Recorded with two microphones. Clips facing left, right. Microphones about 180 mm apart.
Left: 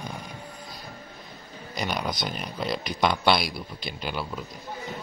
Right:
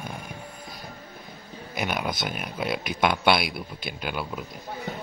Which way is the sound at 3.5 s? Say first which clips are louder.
Right 1 dB; 55° right (ahead or behind).